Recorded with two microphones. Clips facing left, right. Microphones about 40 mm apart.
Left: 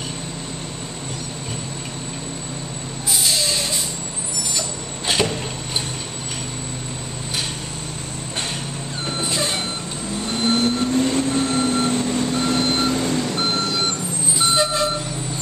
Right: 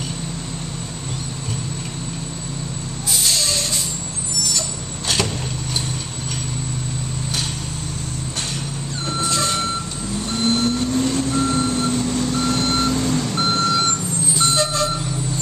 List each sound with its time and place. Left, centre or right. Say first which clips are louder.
3.3 s vehicle: even; centre
5.0 s vehicle: left 2 dB; left
9.0 s vehicle: right 2 dB; centre
13.3 s vehicle: right 3 dB; centre